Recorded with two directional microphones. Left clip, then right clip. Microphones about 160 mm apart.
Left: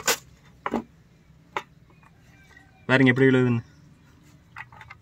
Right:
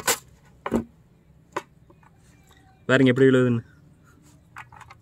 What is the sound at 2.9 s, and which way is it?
Speech, 25° left (ahead or behind).